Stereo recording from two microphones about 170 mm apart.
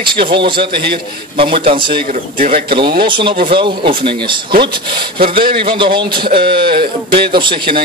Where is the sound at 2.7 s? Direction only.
30° right (ahead or behind).